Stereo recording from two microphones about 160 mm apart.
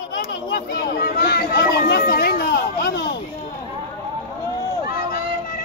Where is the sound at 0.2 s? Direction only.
70° left (ahead or behind).